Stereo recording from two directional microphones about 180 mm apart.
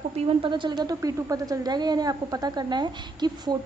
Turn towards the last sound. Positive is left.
turn(degrees=-25)  # may be behind; listen again after turning